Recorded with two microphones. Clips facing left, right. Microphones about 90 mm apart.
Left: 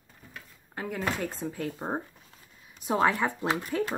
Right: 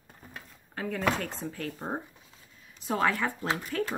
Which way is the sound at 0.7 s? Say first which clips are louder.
Right 2 dB; 5° left (ahead or behind).